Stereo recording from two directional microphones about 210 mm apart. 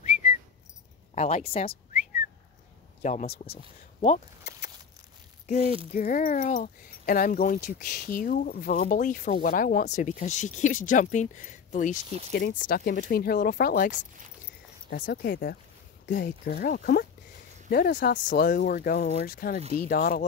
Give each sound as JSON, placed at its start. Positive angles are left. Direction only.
{"t": 1.1, "sound": "speech", "side_deg": 30}
{"t": 3.0, "sound": "speech", "side_deg": 35}
{"t": 5.6, "sound": "speech", "side_deg": -25}
{"t": 5.9, "sound": "speech", "side_deg": 40}